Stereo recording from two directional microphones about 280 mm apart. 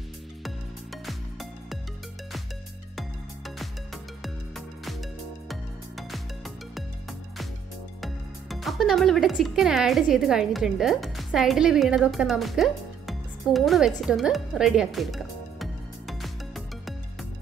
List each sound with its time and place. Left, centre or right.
1.0 s music: centre
3.0 s music: centre
8.0 s speech: centre